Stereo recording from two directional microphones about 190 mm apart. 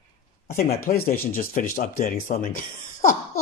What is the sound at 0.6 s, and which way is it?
A man's voice, 55° left (ahead or behind).